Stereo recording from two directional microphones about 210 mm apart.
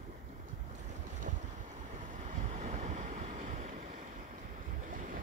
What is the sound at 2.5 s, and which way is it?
Waves, 35° right (ahead or behind).